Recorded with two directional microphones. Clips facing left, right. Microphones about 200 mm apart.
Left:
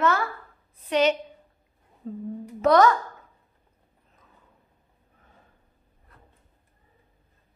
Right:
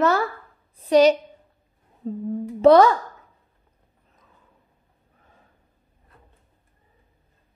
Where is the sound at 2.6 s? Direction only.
25° right (ahead or behind).